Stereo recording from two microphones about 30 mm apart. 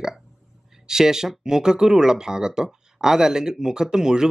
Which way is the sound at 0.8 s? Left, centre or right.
Centre.